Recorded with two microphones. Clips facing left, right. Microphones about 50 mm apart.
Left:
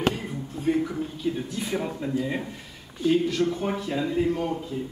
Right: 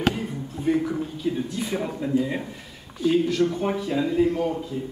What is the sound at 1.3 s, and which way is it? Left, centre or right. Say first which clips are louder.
A man's voice: right 2 dB; centre.